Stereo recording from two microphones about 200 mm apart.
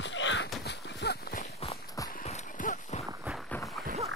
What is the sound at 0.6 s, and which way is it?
Horse, 60° left (ahead or behind).